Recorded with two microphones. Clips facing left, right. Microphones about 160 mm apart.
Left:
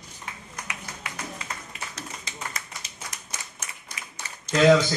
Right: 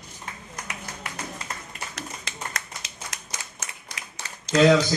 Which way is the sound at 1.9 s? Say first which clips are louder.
Right 2 dB; 80° right.